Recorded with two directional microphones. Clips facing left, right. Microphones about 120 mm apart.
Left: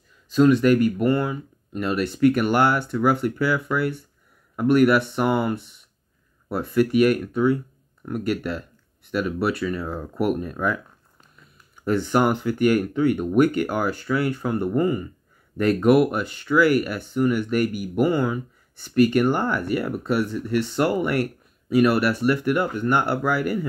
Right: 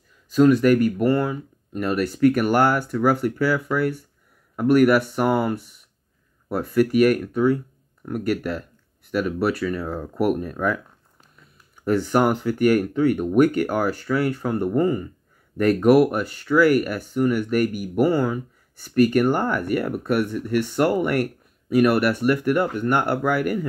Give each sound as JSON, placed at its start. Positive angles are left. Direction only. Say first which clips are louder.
{"t": 0.3, "sound": "speech", "louder": "right 1 dB", "side_deg": -45}
{"t": 9.8, "sound": "speech", "louder": "right 1 dB", "side_deg": -90}
{"t": 10.1, "sound": "speech", "louder": "right 2 dB", "side_deg": -45}
{"t": 11.8, "sound": "speech", "louder": "right 1 dB", "side_deg": -40}